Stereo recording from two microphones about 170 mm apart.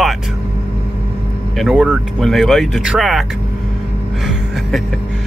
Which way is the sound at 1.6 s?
5° right (ahead or behind).